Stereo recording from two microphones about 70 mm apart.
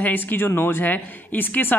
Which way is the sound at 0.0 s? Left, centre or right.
Left.